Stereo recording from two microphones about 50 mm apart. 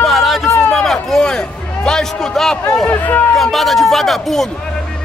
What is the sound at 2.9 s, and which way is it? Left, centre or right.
Speech, left.